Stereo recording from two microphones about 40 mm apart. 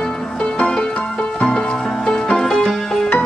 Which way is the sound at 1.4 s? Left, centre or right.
Left.